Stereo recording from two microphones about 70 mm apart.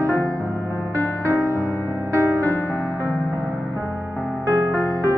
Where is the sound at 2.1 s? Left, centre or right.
Right.